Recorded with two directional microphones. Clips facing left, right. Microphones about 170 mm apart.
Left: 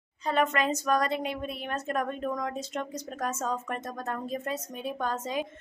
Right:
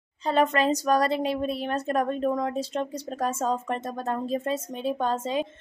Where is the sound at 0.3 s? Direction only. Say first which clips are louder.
Right 4 dB; 30° right (ahead or behind).